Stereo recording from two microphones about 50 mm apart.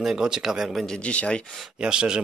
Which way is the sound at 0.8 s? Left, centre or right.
Centre.